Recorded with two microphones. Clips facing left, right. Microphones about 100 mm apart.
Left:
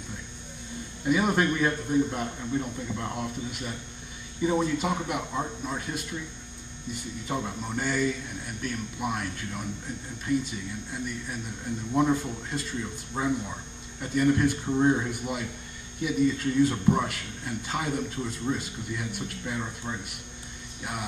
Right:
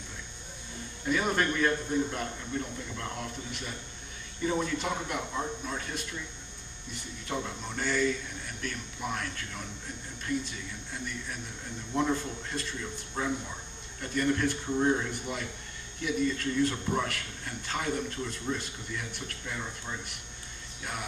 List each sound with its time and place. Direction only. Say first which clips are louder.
1.0 s a man's voice: left 4 dB; 10° left (ahead or behind)